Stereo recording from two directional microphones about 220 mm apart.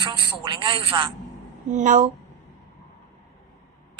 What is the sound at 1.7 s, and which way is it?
Speech, 35° right (ahead or behind).